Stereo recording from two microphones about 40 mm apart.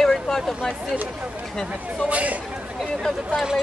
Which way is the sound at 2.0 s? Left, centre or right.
Right.